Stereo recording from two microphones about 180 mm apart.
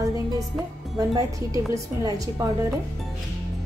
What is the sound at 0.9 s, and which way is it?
A woman's voice, 20° right (ahead or behind).